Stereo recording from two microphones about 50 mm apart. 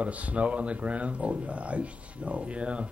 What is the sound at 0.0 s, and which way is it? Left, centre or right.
Speech, right.